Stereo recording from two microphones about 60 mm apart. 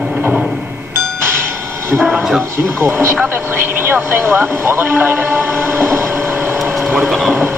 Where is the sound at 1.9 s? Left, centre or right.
Right.